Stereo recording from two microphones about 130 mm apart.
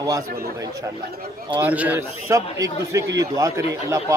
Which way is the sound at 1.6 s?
10° right (ahead or behind).